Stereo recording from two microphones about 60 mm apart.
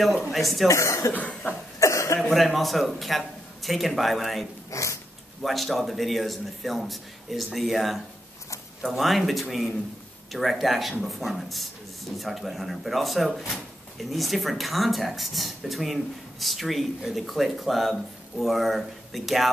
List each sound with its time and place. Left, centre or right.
0.3 s speech: centre
0.7 s speech: left
1.1 s cough: left
1.8 s cough: left
2.1 s speech: centre
4.6 s a sound: left
5.4 s speech: centre